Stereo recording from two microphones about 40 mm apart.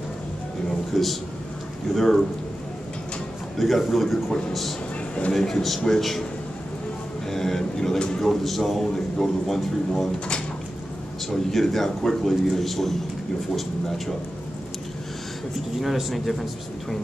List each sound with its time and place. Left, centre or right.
0.9 s a man's voice: centre
3.5 s a man's voice: centre
5.2 s a man's voice: left
5.6 s a man's voice: centre
7.2 s a sound: centre
8.2 s a man's voice: centre
11.2 s a man's voice: centre
15.8 s a man's voice: centre